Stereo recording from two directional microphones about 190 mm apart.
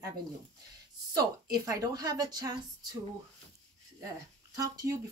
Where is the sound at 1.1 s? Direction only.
20° right (ahead or behind).